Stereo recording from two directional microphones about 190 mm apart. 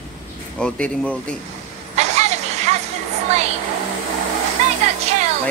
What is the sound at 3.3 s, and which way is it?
Speech, 35° right (ahead or behind).